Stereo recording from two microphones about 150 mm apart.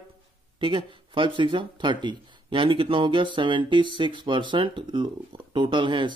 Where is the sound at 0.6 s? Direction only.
35° right (ahead or behind).